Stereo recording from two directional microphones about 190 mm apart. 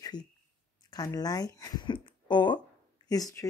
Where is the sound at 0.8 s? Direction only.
20° left (ahead or behind).